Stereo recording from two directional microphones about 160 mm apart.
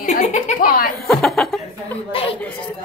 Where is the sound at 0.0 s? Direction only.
50° left (ahead or behind).